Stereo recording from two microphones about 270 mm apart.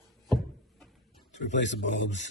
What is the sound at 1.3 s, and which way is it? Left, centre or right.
Speech, left.